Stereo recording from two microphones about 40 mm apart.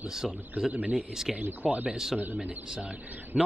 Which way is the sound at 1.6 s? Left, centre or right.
Right.